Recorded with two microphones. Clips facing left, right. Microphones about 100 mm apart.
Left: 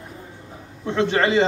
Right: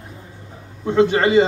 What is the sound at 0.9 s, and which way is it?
Speech, 10° right (ahead or behind).